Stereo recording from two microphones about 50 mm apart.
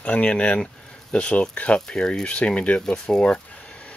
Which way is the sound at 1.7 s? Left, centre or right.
Centre.